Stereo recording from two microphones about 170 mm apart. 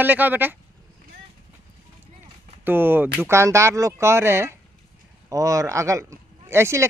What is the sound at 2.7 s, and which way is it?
Speech, 10° right (ahead or behind).